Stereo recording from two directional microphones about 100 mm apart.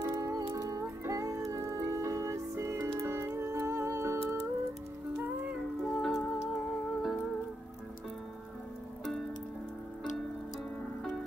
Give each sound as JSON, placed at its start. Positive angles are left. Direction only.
{"t": 0.0, "sound": "music", "side_deg": -30}
{"t": 5.8, "sound": "music", "side_deg": 5}